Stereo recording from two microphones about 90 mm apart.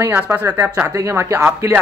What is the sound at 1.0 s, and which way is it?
Speech, 35° right (ahead or behind).